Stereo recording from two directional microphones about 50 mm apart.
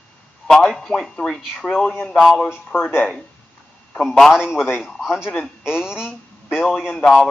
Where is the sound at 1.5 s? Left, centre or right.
Centre.